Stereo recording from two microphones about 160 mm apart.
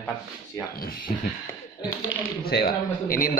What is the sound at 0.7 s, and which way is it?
Speech, 70° left (ahead or behind).